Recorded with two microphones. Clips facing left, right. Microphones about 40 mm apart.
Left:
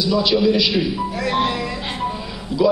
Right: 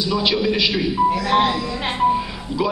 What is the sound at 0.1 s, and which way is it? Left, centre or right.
Speech, right.